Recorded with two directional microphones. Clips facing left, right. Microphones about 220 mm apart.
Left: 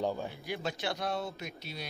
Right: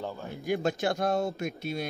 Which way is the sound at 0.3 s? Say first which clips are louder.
Right 8 dB; 50° right (ahead or behind).